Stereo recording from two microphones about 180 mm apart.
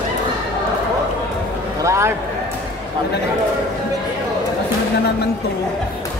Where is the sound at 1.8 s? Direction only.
15° right (ahead or behind).